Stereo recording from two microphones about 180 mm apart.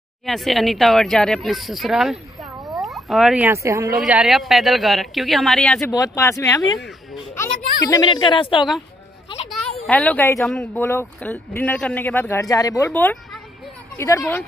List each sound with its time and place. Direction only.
0.3 s speech: centre (ahead or behind); by 3.9 s 15° right (ahead or behind)
4.0 s speech: 5° right (ahead or behind)
5.9 s a child's voice: 20° left (ahead or behind)
9.8 s a woman's voice: 10° left (ahead or behind)